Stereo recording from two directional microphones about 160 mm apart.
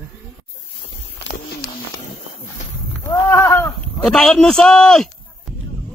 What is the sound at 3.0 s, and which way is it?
Speech, 15° left (ahead or behind).